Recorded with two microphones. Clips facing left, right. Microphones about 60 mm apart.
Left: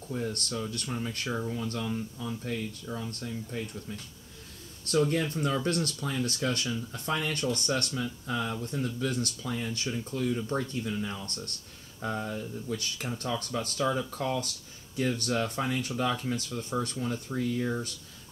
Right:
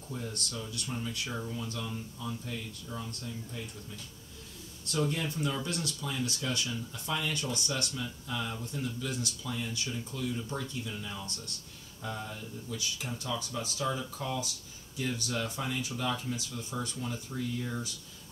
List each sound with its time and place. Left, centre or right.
0.1 s speech: left
0.8 s speech: left
1.3 s speech: left
1.7 s speech: left